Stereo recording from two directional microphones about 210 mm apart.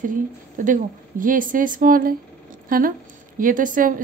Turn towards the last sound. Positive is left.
turn(degrees=-40)  # may be behind; listen again after turning